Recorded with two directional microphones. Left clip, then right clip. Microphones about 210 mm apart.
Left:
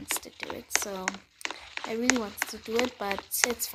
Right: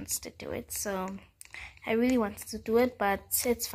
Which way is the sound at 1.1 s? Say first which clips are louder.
Left 12 dB; 50° left (ahead or behind).